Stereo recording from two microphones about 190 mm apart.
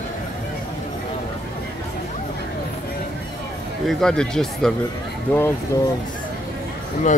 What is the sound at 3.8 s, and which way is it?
Speech, 5° left (ahead or behind).